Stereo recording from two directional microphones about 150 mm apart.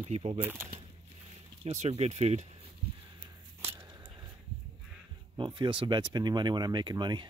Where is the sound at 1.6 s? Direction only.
45° right (ahead or behind).